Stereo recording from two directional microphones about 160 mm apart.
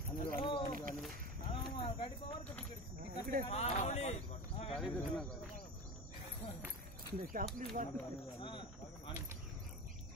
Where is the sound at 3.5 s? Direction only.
40° left (ahead or behind).